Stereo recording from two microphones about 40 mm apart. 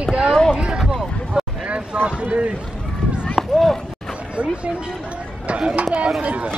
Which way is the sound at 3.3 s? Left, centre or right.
Centre.